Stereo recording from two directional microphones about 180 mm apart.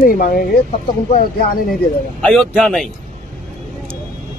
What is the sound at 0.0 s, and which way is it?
Speech, 50° left (ahead or behind).